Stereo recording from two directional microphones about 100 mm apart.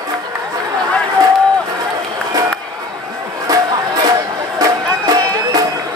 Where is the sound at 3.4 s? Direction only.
40° right (ahead or behind).